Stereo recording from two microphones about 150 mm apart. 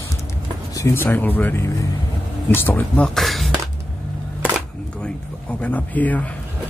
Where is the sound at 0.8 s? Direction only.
15° left (ahead or behind).